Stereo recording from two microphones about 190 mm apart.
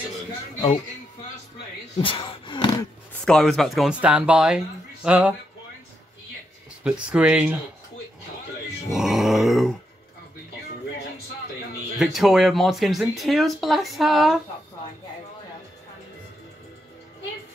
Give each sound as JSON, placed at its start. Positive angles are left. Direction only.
{"t": 2.0, "sound": "a sound", "side_deg": 25}
{"t": 3.3, "sound": "speech", "side_deg": 0}
{"t": 6.8, "sound": "speech", "side_deg": -5}
{"t": 8.9, "sound": "speech", "side_deg": 0}
{"t": 12.0, "sound": "speech", "side_deg": 0}